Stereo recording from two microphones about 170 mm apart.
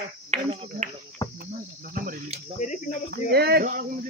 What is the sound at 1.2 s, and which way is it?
Cricket, 20° left (ahead or behind).